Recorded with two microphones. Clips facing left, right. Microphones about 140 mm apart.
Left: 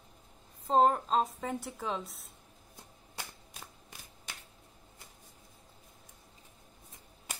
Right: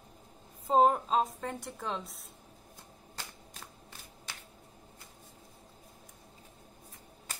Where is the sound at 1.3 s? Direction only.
5° left (ahead or behind).